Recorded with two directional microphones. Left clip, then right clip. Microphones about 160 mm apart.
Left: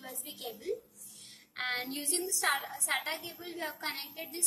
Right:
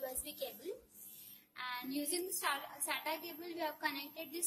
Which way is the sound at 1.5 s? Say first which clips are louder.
Left 7 dB; 35° right (ahead or behind).